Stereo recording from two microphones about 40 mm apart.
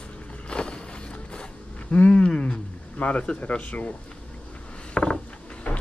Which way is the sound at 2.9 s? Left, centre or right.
Left.